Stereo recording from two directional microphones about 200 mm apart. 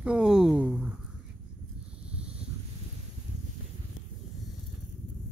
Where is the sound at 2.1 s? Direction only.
5° right (ahead or behind).